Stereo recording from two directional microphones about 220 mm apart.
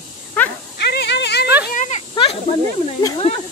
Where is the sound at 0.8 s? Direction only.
50° left (ahead or behind).